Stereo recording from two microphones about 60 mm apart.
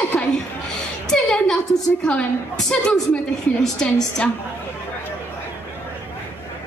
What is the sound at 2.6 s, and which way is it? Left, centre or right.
A woman's voice, centre.